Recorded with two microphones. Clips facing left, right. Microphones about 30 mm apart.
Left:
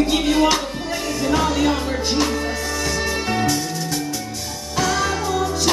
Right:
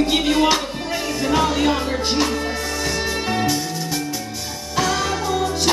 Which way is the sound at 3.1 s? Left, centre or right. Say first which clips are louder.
Even; centre.